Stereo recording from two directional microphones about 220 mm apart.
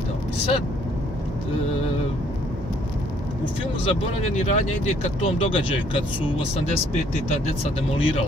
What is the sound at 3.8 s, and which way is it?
Speech, 30° left (ahead or behind).